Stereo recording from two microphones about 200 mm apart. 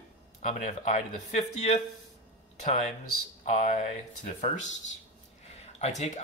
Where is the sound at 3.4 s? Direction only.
35° left (ahead or behind).